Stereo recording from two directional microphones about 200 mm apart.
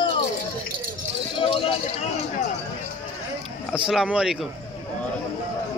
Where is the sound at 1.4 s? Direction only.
25° left (ahead or behind).